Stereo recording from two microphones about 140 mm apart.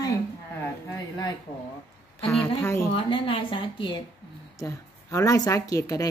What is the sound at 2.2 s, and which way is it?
Speech, 5° left (ahead or behind).